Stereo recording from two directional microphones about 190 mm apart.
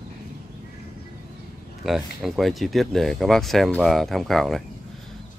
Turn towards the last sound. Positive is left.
turn(degrees=0)  # may be behind; listen again after turning